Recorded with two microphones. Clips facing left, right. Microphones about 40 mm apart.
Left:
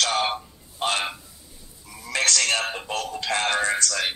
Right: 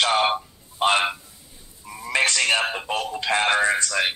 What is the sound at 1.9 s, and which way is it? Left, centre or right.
Speech, right.